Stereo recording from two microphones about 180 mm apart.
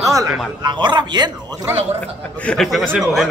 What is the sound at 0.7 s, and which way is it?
Speech, 25° right (ahead or behind).